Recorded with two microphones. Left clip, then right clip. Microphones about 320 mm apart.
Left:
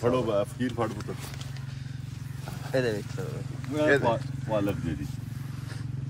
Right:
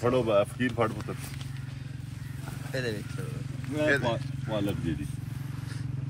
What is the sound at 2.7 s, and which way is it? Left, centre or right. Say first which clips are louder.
Speech: left 6 dB; left.